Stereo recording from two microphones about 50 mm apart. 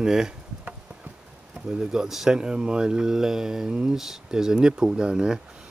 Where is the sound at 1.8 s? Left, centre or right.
Centre.